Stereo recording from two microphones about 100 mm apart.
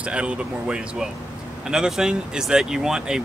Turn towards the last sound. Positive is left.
turn(degrees=-5)  # may be behind; listen again after turning